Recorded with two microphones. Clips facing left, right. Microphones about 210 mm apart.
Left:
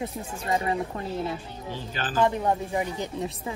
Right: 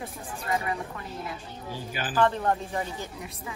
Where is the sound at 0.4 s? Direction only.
25° left (ahead or behind).